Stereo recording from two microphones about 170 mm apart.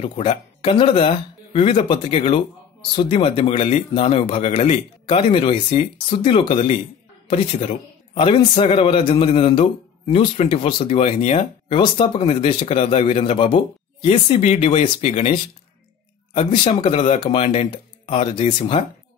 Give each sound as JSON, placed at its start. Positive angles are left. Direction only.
{"t": 0.0, "sound": "a man's voice", "side_deg": 35}
{"t": 8.1, "sound": "a man's voice", "side_deg": 30}
{"t": 16.3, "sound": "a man's voice", "side_deg": 30}